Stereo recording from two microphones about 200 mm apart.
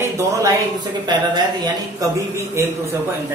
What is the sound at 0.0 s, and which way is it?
A woman's voice, 15° right (ahead or behind).